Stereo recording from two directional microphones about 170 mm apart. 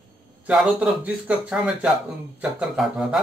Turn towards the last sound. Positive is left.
turn(degrees=0)  # may be behind; listen again after turning